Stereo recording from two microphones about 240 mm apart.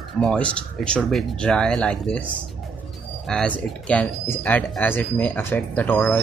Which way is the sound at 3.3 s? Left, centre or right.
Centre.